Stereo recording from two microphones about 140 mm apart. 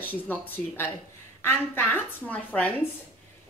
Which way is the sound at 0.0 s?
15° left (ahead or behind).